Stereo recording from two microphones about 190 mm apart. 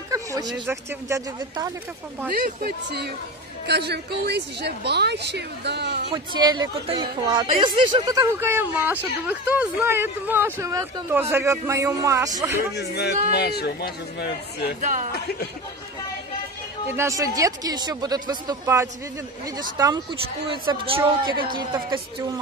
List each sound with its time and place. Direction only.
0.1 s speech: 20° right (ahead or behind)
2.3 s a woman's voice: 50° right (ahead or behind)
6.1 s speech: 20° right (ahead or behind)
12.7 s speech: 60° left (ahead or behind)
14.8 s speech: 45° right (ahead or behind)
16.9 s speech: 15° right (ahead or behind)
20.4 s speech: 30° right (ahead or behind)